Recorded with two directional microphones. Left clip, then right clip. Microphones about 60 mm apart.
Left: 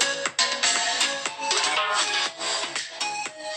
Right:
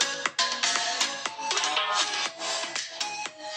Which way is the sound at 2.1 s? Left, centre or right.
Right.